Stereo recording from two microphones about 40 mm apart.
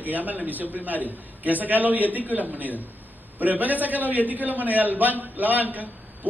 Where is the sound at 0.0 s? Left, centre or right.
Right.